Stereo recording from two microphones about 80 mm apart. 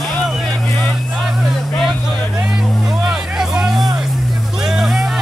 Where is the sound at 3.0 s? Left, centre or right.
Centre.